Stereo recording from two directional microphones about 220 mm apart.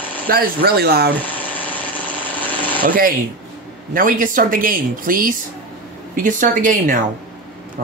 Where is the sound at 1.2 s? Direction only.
5° left (ahead or behind).